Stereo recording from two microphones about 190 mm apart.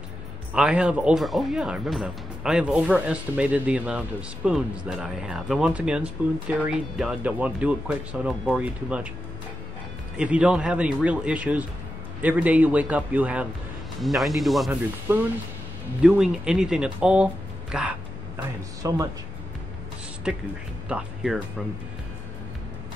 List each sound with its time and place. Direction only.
0.6 s speech: 5° right (ahead or behind)
10.1 s speech: 5° right (ahead or behind)
15.1 s speech: 10° right (ahead or behind)
18.8 s speech: 20° right (ahead or behind)
20.3 s speech: 5° right (ahead or behind)